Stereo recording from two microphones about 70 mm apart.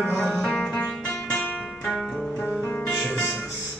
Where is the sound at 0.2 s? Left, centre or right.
Centre.